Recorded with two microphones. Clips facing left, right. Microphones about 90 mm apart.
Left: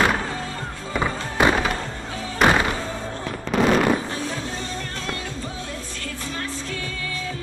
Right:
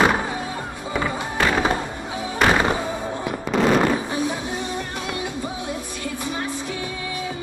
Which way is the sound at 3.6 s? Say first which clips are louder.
Right 1 dB; 10° right (ahead or behind).